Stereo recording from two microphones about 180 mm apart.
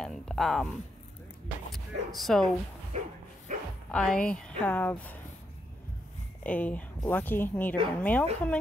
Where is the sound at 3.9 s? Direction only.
5° left (ahead or behind).